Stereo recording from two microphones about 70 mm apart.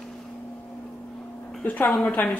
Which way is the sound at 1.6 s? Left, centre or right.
Left.